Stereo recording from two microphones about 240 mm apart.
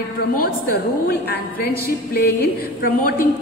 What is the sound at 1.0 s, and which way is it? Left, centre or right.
Speech, left.